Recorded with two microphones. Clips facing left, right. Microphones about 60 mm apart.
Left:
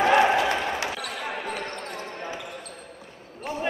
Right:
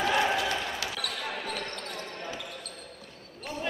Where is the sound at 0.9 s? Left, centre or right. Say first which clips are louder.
Left 3 dB; centre.